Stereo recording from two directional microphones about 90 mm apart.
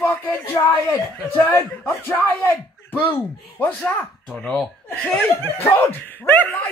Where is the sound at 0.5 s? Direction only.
30° left (ahead or behind).